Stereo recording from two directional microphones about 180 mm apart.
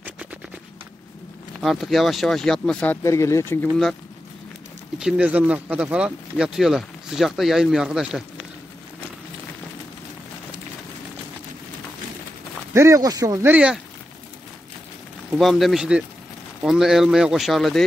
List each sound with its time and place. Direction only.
1.6 s speech: centre (ahead or behind); by 3.5 s 15° left (ahead or behind)
4.9 s speech: 5° right (ahead or behind)
12.7 s speech: 15° right (ahead or behind)
15.3 s speech: centre (ahead or behind)